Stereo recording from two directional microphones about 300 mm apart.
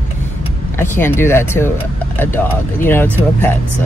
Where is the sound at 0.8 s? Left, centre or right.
Centre.